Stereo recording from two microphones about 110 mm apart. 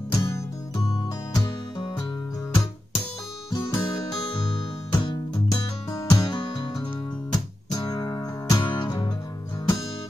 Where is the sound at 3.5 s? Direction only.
40° left (ahead or behind).